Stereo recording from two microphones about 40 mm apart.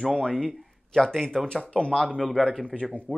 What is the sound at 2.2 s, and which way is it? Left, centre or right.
Speech, centre.